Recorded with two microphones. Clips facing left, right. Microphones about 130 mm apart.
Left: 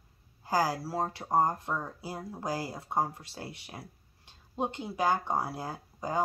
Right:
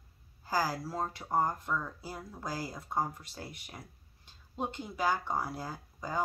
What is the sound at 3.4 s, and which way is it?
Speech, 30° left (ahead or behind).